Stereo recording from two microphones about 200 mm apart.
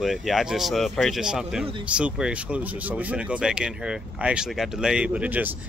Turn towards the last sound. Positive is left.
turn(degrees=-5)  # may be behind; listen again after turning